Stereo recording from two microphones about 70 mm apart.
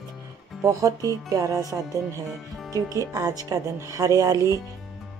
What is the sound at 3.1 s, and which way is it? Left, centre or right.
Speech, right.